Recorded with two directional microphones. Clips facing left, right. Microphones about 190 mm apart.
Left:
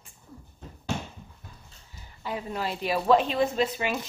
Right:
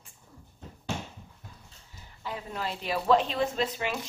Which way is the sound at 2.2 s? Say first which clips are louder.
Left 3 dB; 10° left (ahead or behind).